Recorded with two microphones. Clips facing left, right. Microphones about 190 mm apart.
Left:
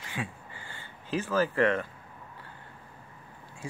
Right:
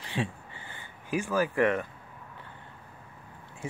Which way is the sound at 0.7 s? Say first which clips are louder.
Right 1 dB; 15° right (ahead or behind).